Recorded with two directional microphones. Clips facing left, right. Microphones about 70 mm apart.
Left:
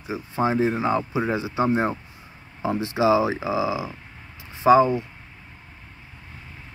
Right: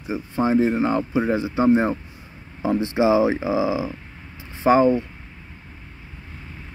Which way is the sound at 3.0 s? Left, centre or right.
Left.